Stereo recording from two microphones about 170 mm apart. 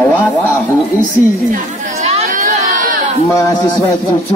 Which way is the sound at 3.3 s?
20° left (ahead or behind).